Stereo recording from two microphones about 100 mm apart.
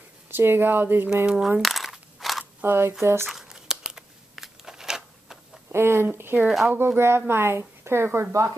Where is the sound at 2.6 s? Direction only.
25° right (ahead or behind).